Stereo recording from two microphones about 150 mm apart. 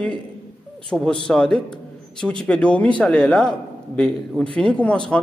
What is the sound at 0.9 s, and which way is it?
A man's voice, centre (ahead or behind).